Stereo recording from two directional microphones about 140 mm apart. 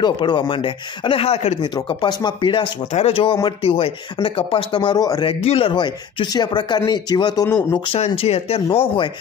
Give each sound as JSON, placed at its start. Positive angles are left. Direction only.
{"t": 0.0, "sound": "speech", "side_deg": 35}
{"t": 1.6, "sound": "speech", "side_deg": 35}
{"t": 5.4, "sound": "speech", "side_deg": 45}
{"t": 7.9, "sound": "speech", "side_deg": 40}